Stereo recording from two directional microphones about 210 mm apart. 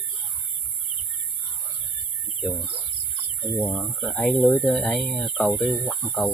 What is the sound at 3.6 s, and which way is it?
Speech, 5° left (ahead or behind).